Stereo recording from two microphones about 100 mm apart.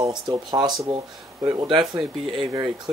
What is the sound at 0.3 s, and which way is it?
Speech, 45° right (ahead or behind).